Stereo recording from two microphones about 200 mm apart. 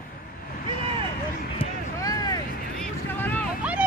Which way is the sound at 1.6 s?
20° left (ahead or behind).